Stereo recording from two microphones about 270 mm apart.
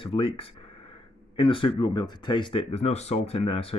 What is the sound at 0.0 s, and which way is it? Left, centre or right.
Speech, centre.